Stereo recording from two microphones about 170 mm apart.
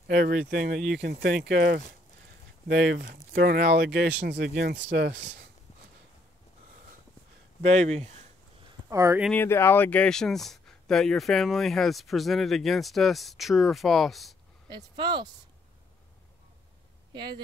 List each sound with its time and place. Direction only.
0.1 s speech: 60° right (ahead or behind)
2.7 s speech: 80° right
3.3 s speech: 65° right (ahead or behind); by 4.1 s 85° right
4.3 s speech: 60° right (ahead or behind); by 5.4 s 90° right
7.6 s speech: 40° right (ahead or behind)
8.8 s speech: 15° right (ahead or behind)
9.3 s speech: 15° left (ahead or behind)
14.7 s speech: 25° right (ahead or behind)
17.1 s speech: 25° right (ahead or behind)